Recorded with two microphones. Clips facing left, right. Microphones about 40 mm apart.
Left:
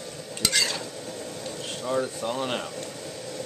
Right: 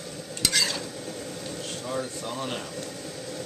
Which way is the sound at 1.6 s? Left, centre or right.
Centre.